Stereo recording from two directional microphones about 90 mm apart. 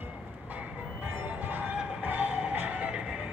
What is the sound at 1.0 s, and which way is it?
Music, 20° right (ahead or behind).